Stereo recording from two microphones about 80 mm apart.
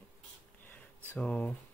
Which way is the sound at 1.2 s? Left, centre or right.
Centre.